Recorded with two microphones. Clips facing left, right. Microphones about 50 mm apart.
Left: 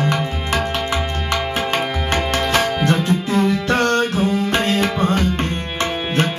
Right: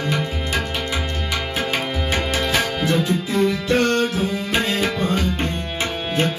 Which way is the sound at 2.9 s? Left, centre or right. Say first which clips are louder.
Left 2 dB; left.